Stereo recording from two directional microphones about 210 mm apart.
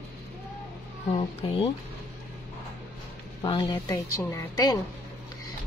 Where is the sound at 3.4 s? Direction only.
20° left (ahead or behind).